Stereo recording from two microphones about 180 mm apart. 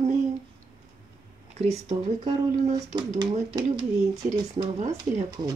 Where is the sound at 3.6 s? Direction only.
20° right (ahead or behind).